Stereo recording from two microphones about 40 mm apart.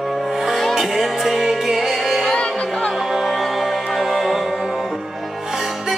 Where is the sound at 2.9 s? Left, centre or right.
Centre.